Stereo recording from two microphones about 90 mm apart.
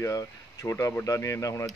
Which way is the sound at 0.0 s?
40° left (ahead or behind).